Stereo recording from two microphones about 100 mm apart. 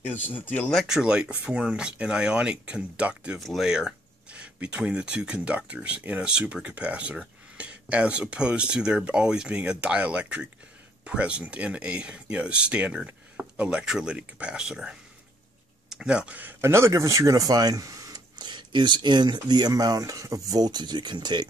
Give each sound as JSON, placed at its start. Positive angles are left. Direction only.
{"t": 0.0, "sound": "speech", "side_deg": 20}
{"t": 0.7, "sound": "speech", "side_deg": -5}
{"t": 3.3, "sound": "speech", "side_deg": 0}